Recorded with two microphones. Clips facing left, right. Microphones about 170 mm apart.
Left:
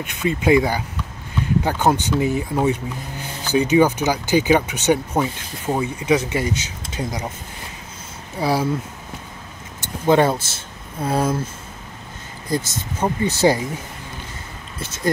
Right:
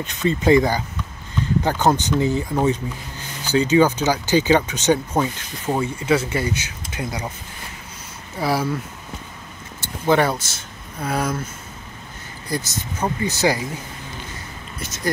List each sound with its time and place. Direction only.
0.0 s speech: 10° left (ahead or behind)
8.4 s speech: 20° left (ahead or behind)
10.0 s speech: 20° left (ahead or behind)
12.4 s speech: 25° left (ahead or behind)